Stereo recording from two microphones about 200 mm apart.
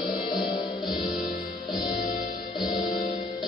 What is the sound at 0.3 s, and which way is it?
Music, centre (ahead or behind).